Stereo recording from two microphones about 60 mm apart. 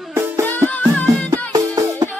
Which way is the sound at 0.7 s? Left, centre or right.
Left.